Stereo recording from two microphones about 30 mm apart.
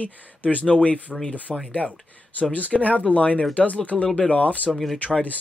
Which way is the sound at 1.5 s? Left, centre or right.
Centre.